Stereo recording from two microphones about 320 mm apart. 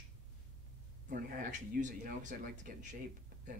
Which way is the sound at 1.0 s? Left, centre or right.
Right.